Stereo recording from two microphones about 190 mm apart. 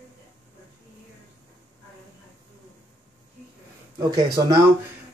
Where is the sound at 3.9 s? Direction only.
20° right (ahead or behind).